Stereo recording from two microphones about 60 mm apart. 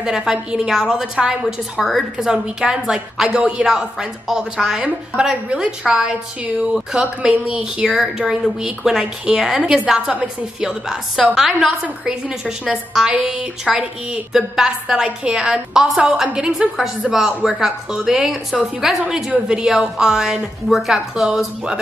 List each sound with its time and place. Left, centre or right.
0.0 s a woman's voice: centre
11.8 s a woman's voice: centre